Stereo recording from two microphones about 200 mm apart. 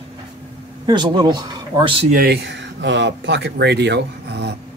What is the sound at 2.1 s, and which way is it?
Speech, 50° right (ahead or behind).